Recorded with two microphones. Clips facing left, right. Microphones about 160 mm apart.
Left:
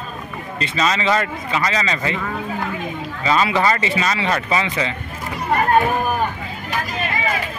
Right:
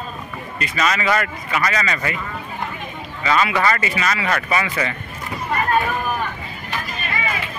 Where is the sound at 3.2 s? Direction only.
30° left (ahead or behind).